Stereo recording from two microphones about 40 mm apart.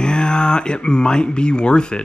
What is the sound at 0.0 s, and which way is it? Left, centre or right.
Speech, left.